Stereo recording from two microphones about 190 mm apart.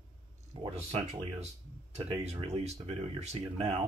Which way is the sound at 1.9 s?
35° right (ahead or behind).